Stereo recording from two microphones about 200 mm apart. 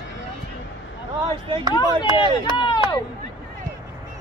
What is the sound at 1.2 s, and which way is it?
Speech, 20° right (ahead or behind).